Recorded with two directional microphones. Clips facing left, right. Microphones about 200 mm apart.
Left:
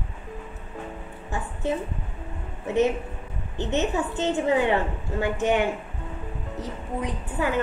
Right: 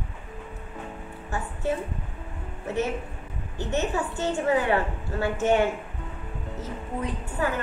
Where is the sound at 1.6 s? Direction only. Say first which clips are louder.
Left 1 dB; 20° left (ahead or behind).